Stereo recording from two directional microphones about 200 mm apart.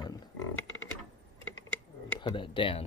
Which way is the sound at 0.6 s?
75° left (ahead or behind).